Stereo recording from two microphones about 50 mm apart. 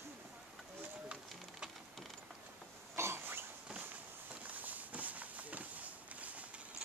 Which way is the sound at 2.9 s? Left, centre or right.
Right.